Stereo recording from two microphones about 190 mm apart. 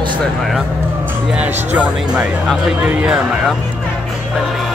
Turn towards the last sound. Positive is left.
turn(degrees=-5)  # may be behind; listen again after turning